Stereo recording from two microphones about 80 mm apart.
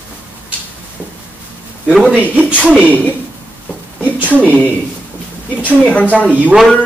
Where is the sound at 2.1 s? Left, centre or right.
Centre.